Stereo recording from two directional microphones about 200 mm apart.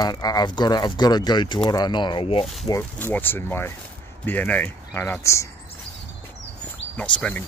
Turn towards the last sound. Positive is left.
turn(degrees=5)  # may be behind; listen again after turning